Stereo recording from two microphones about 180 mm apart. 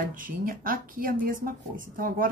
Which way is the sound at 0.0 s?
50° right (ahead or behind).